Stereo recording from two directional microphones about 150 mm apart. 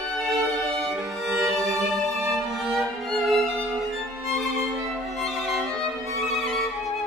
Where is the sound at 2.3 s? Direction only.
Centre (ahead or behind).